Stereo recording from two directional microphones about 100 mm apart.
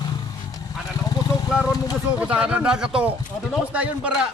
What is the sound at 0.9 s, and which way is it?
Vehicle, 40° left (ahead or behind).